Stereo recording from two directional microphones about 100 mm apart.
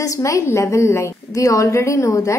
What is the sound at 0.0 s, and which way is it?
A woman's voice, 30° left (ahead or behind).